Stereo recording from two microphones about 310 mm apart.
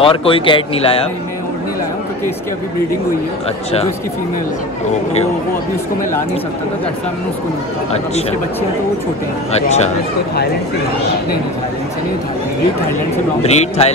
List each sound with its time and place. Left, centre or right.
0.0 s speech: centre
9.5 s speech: left
13.4 s speech: left